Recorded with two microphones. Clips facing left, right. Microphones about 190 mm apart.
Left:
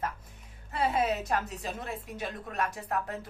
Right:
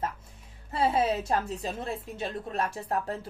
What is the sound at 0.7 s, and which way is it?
A woman's voice, 30° right (ahead or behind).